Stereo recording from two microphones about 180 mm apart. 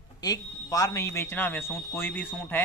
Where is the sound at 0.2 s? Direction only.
20° left (ahead or behind).